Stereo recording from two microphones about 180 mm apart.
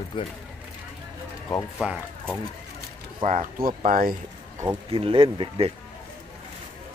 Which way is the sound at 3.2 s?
45° right (ahead or behind).